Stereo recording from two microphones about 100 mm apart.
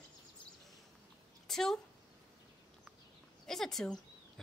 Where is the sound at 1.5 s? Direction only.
5° left (ahead or behind).